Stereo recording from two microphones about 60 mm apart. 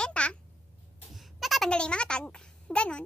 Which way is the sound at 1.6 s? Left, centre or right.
Centre.